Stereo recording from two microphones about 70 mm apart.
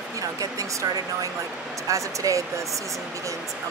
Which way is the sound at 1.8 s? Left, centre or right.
Right.